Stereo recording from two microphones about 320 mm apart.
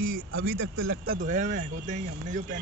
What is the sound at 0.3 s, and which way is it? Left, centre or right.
Speech, right.